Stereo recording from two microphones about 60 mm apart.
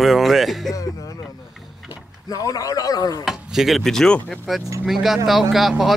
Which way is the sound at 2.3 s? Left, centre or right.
Left.